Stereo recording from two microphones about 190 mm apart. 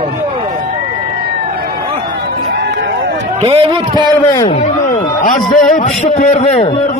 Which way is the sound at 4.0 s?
20° left (ahead or behind).